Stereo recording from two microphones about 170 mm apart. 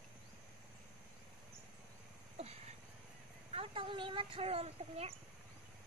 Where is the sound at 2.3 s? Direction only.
35° right (ahead or behind).